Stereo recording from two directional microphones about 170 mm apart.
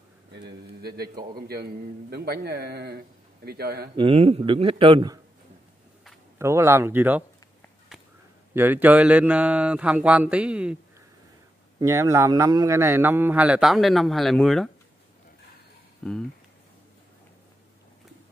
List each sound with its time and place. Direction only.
0.8 s a man's voice: 70° right (ahead or behind)
3.9 s a man's voice: 35° right (ahead or behind)
6.3 s a man's voice: 15° right (ahead or behind)
8.5 s a man's voice: 10° right (ahead or behind)
11.8 s a man's voice: 15° right (ahead or behind); by 14.7 s centre (ahead or behind)
16.0 s speech: 5° left (ahead or behind)